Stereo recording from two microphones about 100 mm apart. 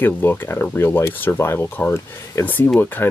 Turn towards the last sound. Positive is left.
turn(degrees=20)  # may be behind; listen again after turning